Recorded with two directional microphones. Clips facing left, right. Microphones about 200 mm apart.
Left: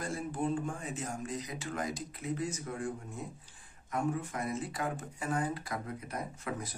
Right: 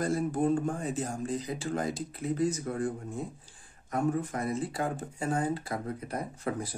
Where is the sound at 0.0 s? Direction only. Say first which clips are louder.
Right 7 dB; 40° right (ahead or behind).